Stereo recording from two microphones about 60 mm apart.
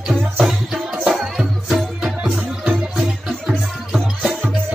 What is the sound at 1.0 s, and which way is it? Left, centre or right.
Music, centre.